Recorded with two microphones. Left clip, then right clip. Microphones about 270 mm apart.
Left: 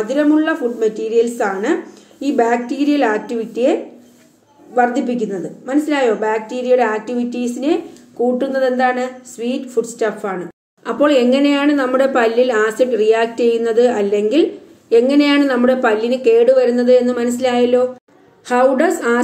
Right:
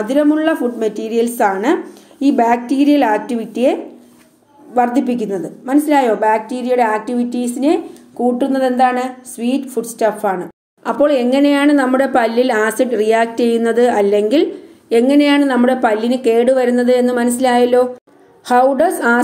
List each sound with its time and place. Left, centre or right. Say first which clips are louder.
0.0 s speech: right 1 dB; right
4.7 s speech: right 1 dB; right